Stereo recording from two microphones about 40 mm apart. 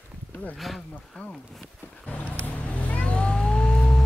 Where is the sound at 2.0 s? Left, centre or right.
Left.